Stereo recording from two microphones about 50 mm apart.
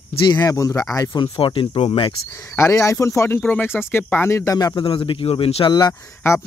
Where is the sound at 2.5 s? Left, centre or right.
Left.